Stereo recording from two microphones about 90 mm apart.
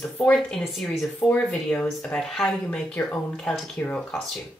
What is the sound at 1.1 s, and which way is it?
Speech, 15° left (ahead or behind).